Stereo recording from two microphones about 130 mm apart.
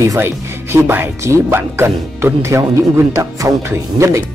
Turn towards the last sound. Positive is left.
turn(degrees=-20)  # may be behind; listen again after turning